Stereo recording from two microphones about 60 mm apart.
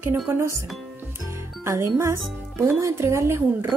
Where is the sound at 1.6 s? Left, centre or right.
Right.